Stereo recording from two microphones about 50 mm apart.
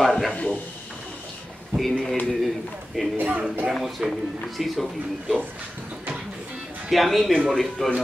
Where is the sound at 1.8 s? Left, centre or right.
Centre.